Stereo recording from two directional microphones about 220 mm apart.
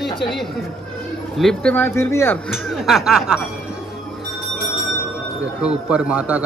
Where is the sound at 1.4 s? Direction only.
5° left (ahead or behind).